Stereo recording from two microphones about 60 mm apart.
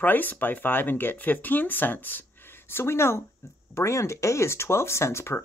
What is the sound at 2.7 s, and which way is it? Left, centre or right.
Speech, left.